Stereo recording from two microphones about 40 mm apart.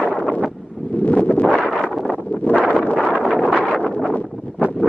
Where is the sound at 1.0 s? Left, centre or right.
Left.